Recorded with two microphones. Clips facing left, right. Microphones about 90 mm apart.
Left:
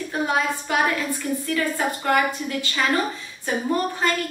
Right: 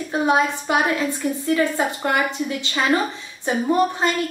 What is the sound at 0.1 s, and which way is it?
A woman's voice, 20° right (ahead or behind).